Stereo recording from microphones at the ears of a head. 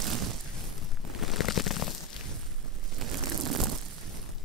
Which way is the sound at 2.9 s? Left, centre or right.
Right.